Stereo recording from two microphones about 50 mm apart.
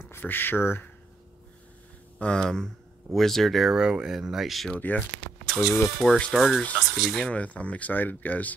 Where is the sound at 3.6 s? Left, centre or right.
Centre.